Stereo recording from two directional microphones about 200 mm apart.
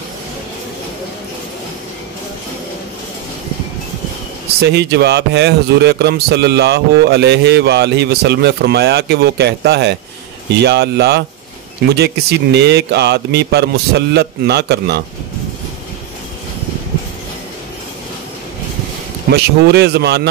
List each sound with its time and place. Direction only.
4.6 s a man's voice: 55° right (ahead or behind)
19.3 s a man's voice: 55° right (ahead or behind)